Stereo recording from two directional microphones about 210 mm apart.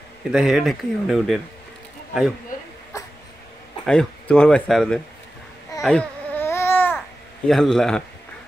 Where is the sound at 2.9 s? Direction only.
15° left (ahead or behind).